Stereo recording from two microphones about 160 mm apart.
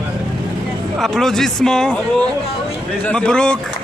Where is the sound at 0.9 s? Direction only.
Centre (ahead or behind).